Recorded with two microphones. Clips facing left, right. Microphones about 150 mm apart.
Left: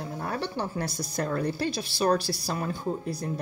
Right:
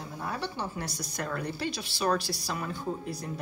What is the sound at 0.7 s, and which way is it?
Speech, 35° left (ahead or behind).